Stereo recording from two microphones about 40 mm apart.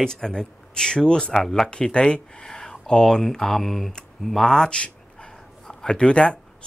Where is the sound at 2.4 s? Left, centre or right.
Centre.